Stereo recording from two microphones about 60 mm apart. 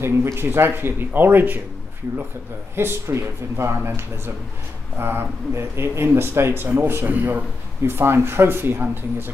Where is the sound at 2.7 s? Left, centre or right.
Right.